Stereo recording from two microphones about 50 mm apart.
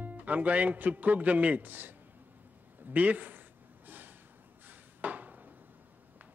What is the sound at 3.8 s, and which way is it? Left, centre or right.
Snort, right.